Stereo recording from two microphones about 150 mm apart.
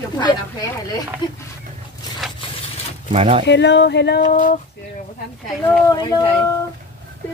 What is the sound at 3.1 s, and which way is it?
Speech, 45° right (ahead or behind).